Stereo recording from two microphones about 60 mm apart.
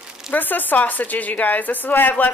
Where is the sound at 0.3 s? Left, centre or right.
Left.